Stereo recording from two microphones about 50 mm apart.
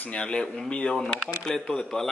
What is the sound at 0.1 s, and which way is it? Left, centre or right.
Speech, centre.